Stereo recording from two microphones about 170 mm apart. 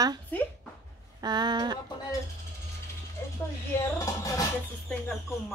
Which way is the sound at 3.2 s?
15° left (ahead or behind).